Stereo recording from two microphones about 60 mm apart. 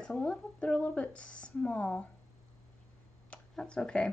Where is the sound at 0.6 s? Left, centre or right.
Left.